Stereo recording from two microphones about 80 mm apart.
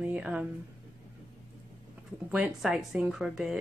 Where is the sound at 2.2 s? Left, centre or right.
Centre.